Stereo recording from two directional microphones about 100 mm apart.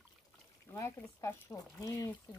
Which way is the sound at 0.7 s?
30° left (ahead or behind).